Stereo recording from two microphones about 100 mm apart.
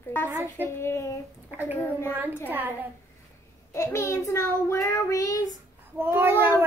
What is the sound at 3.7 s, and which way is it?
Child singing, 25° left (ahead or behind).